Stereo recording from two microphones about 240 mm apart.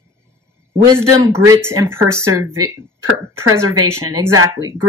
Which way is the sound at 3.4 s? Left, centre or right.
Right.